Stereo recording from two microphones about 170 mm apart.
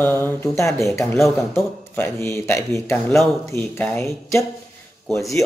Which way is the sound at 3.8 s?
5° left (ahead or behind).